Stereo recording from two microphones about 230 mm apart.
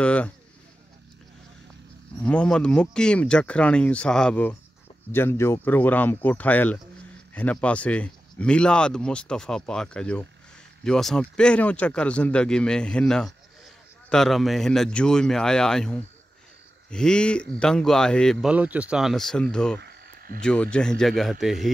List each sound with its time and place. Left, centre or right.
0.0 s speech: centre
2.2 s speech: centre
19.8 s frog: right
20.4 s speech: centre